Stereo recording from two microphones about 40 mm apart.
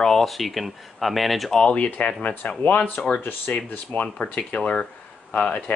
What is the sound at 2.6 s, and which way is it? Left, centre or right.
Speech, left.